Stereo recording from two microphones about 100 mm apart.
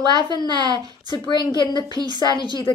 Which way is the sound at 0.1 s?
45° right (ahead or behind).